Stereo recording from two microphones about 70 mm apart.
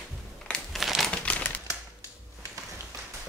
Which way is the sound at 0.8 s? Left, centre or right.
Centre.